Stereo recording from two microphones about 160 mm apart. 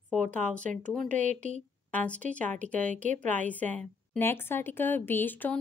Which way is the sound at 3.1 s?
50° right (ahead or behind).